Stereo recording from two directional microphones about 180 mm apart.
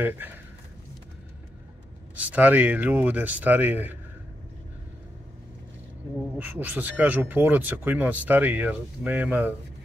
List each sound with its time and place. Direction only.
2.1 s speech: 10° right (ahead or behind)
6.3 s speech: 10° right (ahead or behind)